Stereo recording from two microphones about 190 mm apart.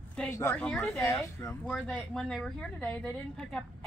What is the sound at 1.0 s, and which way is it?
A man's voice, 15° left (ahead or behind).